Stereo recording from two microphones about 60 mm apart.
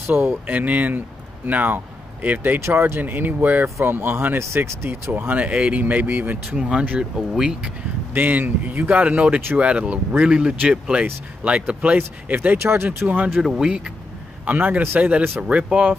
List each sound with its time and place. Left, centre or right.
0.0 s speech: right
0.5 s speech: right
3.6 s speech: right
3.9 s speech: right
4.4 s speech: right
4.8 s speech: right
6.5 s speech: centre
7.2 s speech: centre
8.1 s speech: right
12.5 s speech: right
12.8 s speech: right
13.4 s speech: centre
14.4 s a man's voice: right